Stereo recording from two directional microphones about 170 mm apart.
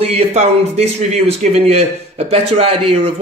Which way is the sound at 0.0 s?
40° right (ahead or behind).